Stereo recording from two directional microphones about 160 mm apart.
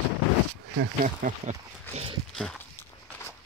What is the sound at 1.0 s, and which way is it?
Speech, 50° right (ahead or behind).